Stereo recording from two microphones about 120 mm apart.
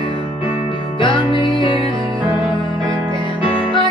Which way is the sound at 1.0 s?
45° left (ahead or behind).